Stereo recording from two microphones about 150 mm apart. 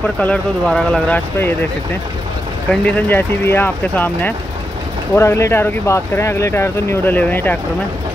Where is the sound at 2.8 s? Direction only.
10° left (ahead or behind).